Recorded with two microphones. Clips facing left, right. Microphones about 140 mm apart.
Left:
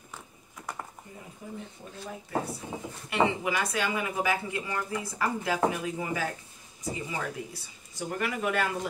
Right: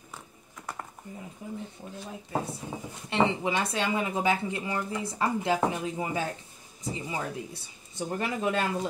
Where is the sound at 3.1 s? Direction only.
25° right (ahead or behind).